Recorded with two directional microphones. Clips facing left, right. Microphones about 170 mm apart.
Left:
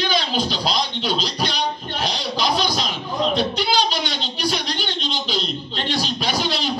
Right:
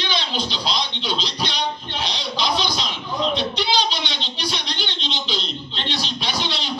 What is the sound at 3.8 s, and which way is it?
A man's voice, 45° left (ahead or behind).